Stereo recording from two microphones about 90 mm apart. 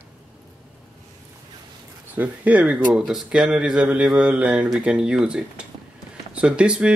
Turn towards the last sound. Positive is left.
turn(degrees=-10)  # may be behind; listen again after turning